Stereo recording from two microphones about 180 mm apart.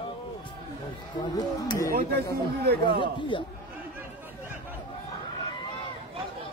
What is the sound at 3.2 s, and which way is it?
Speech, 25° left (ahead or behind).